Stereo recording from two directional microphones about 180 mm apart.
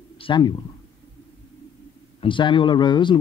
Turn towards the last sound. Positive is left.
turn(degrees=25)  # may be behind; listen again after turning